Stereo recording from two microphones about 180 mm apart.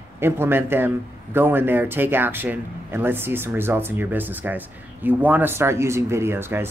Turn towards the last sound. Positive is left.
turn(degrees=-15)  # may be behind; listen again after turning